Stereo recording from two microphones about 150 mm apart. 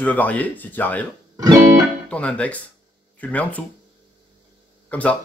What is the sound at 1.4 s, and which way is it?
Music, 25° right (ahead or behind).